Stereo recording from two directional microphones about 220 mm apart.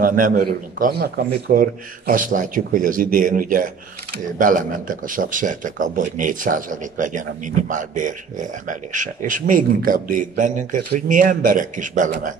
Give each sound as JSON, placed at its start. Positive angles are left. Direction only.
{"t": 0.0, "sound": "a man's voice", "side_deg": -40}